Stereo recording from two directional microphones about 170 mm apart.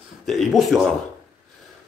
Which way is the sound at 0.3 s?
Centre (ahead or behind).